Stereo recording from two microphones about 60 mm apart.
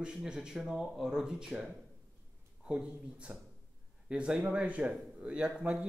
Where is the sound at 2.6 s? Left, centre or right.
Centre.